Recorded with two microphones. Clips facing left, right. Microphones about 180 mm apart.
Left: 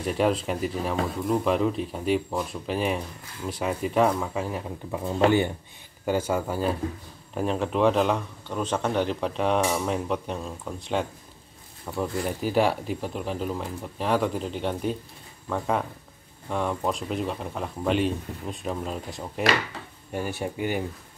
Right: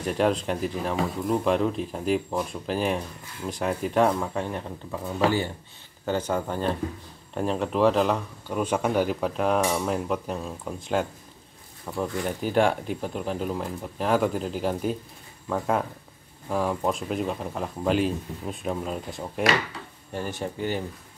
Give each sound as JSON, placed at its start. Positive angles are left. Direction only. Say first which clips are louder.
{"t": 0.0, "sound": "speech", "louder": "even", "side_deg": 0}
{"t": 5.0, "sound": "speech", "louder": "left 3 dB", "side_deg": 20}
{"t": 6.0, "sound": "speech", "louder": "left 1 dB", "side_deg": 10}
{"t": 20.1, "sound": "speech", "louder": "left 1 dB", "side_deg": 10}